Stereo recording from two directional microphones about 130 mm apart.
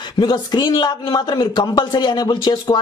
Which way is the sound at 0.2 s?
35° left (ahead or behind).